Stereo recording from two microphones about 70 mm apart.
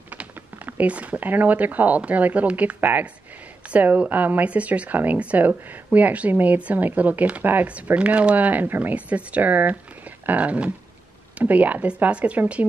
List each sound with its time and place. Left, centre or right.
0.1 s speech: right